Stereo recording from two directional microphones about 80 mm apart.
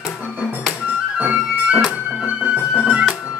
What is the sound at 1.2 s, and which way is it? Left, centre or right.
Music, centre.